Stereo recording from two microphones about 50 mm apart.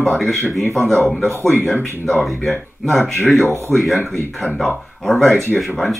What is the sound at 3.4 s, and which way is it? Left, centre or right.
Speech, right.